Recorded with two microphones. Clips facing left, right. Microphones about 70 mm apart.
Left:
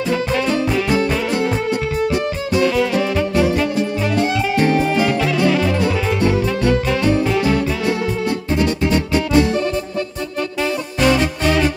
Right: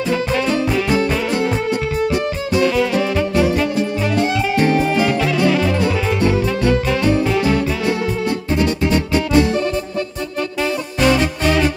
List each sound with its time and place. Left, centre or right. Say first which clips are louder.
0.1 s music: even; right